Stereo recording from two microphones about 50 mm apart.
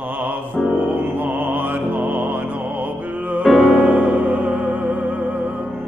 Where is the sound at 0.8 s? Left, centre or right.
Right.